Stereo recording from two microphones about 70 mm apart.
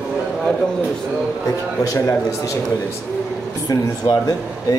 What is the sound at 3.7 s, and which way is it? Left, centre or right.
Speech, left.